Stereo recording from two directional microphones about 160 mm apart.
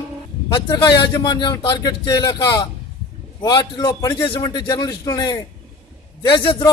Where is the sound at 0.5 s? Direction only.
30° left (ahead or behind).